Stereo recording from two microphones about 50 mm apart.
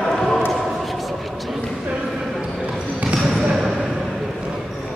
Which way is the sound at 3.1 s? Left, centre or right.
Centre.